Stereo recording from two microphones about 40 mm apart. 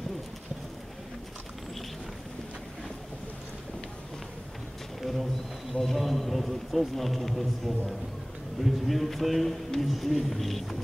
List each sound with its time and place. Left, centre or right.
5.0 s bird: centre
5.8 s speech: centre